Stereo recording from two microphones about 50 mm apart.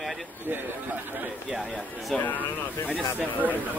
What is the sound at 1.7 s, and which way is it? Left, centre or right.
Speech, centre.